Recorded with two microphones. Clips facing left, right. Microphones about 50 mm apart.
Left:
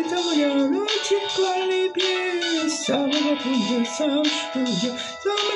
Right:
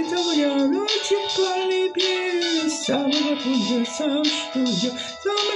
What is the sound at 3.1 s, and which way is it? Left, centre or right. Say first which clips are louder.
Music: even; left.